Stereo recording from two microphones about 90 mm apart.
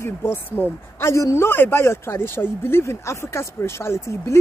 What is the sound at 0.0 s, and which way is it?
Speech, 25° left (ahead or behind).